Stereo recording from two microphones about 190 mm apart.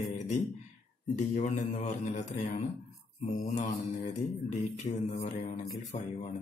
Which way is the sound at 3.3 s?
45° left (ahead or behind).